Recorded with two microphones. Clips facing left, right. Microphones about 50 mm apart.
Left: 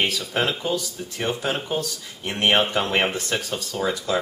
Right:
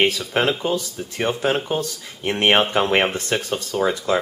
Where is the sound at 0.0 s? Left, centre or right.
Right.